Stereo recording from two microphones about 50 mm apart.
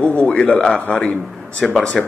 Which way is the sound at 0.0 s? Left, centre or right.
Left.